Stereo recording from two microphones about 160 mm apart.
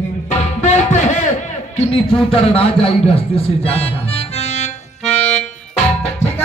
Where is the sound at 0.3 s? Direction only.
45° left (ahead or behind).